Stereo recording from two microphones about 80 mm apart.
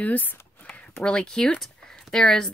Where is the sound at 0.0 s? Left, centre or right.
Left.